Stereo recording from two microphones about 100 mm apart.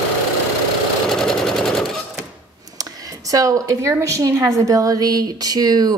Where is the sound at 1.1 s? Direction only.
5° left (ahead or behind).